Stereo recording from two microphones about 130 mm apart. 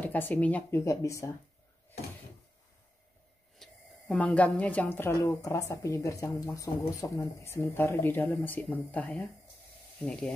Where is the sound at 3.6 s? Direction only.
5° left (ahead or behind).